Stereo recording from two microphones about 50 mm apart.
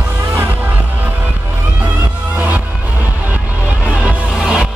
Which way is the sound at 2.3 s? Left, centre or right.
Right.